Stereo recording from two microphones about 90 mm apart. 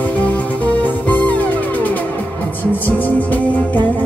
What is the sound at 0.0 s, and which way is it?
Music, 20° left (ahead or behind).